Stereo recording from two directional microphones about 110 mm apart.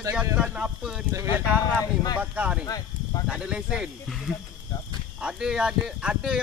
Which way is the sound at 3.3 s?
10° right (ahead or behind).